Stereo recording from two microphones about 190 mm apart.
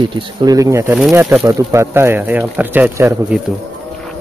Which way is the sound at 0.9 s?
5° right (ahead or behind).